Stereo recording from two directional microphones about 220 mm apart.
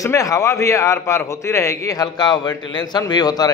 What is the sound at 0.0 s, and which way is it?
A man's voice, 15° left (ahead or behind).